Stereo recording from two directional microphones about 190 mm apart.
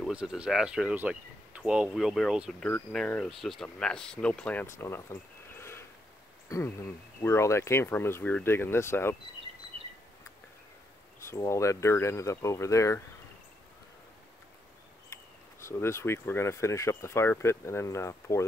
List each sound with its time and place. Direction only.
0.0 s speech: 5° right (ahead or behind); by 9.1 s 15° left (ahead or behind)
11.2 s speech: 15° left (ahead or behind)
15.6 s speech: 15° left (ahead or behind)